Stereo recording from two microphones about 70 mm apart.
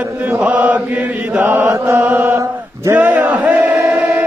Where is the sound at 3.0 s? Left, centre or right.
Right.